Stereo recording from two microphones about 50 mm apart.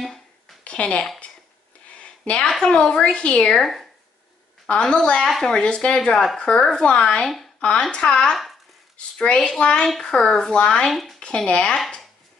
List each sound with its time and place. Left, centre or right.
0.7 s a woman's voice: left
3.5 s speech: centre
4.6 s a woman's voice: left
9.8 s speech: centre
10.9 s speech: centre
11.1 s speech: centre